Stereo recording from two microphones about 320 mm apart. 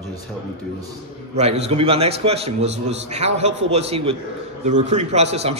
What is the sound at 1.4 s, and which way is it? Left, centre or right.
A man's voice, centre.